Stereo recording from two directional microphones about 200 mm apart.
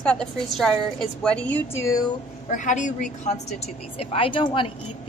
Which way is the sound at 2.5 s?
40° left (ahead or behind).